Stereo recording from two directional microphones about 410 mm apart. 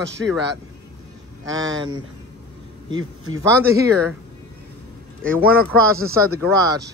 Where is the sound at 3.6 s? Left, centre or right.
Centre.